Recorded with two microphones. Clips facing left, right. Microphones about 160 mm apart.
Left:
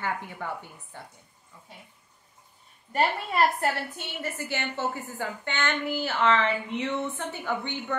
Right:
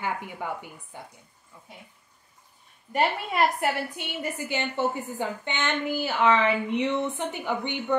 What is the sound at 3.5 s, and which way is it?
A woman's voice, 15° right (ahead or behind).